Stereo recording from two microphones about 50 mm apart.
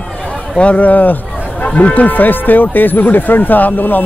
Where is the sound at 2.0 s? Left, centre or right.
Left.